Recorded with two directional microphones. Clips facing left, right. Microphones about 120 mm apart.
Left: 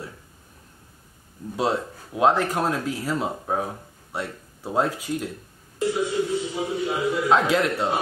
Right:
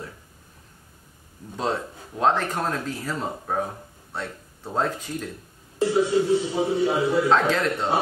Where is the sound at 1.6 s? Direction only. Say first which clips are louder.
Left 2 dB; 10° left (ahead or behind).